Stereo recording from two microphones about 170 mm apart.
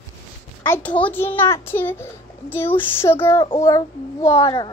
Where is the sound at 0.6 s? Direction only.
10° left (ahead or behind).